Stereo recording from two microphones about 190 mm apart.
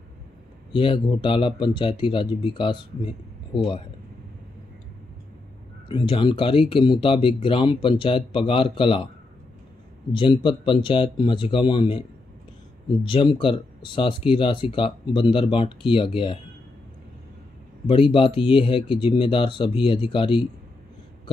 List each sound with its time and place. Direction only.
0.7 s speech: 25° left (ahead or behind)
5.9 s speech: 25° left (ahead or behind)
10.1 s speech: 25° left (ahead or behind)
13.0 s speech: 25° left (ahead or behind)
17.8 s speech: 30° left (ahead or behind)